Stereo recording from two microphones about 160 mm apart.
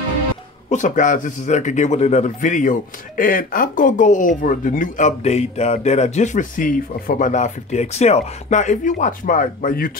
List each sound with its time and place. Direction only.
0.7 s a man's voice: 50° left (ahead or behind)